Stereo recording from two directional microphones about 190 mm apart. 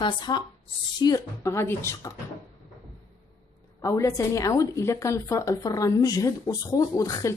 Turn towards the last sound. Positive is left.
turn(degrees=15)  # may be behind; listen again after turning